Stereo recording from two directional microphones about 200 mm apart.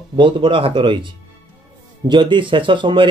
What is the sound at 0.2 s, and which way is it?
Speech, 25° right (ahead or behind).